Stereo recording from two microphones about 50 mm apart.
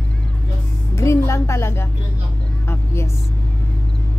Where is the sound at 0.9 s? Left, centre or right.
Left.